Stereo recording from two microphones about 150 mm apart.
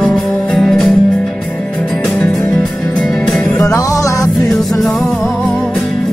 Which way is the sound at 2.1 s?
5° left (ahead or behind).